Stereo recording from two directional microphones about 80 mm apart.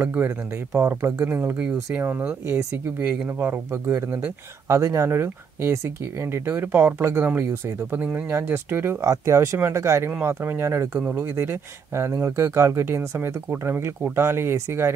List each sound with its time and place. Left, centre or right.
0.0 s speech: right